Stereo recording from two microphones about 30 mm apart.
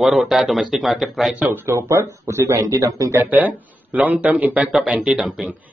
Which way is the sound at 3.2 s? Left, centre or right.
Right.